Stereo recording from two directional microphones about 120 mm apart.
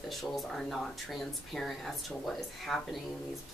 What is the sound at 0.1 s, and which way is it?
Speech, centre (ahead or behind).